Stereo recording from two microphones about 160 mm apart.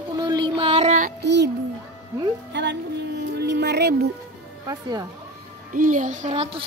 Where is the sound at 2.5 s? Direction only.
90° right.